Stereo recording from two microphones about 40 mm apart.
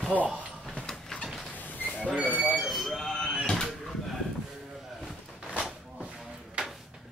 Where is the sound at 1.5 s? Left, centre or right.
Left.